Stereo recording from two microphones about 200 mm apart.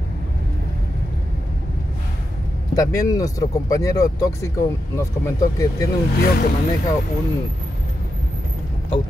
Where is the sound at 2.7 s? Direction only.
15° left (ahead or behind).